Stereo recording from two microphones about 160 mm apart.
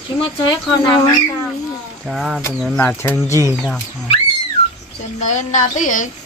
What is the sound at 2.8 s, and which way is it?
Speech, 15° left (ahead or behind).